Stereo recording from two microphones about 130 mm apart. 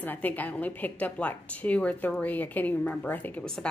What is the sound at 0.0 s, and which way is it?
A woman's voice, 15° left (ahead or behind).